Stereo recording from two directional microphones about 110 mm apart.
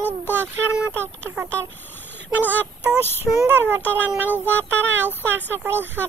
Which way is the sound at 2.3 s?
15° right (ahead or behind).